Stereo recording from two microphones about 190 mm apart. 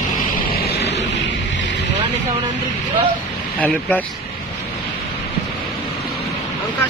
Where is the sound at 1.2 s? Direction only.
70° left (ahead or behind).